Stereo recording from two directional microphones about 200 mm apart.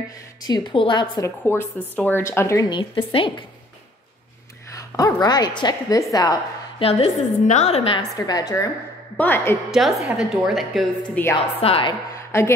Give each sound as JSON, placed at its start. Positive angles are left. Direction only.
{"t": 0.5, "sound": "a woman's voice", "side_deg": 25}
{"t": 1.4, "sound": "a woman's voice", "side_deg": 10}
{"t": 4.6, "sound": "a woman's voice", "side_deg": 15}
{"t": 6.9, "sound": "a woman's voice", "side_deg": 35}
{"t": 9.7, "sound": "a woman's voice", "side_deg": 0}
{"t": 11.6, "sound": "a woman's voice", "side_deg": 30}
{"t": 12.2, "sound": "a sound", "side_deg": 15}